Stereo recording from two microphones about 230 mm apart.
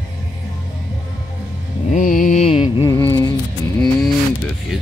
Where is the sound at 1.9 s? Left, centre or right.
Left.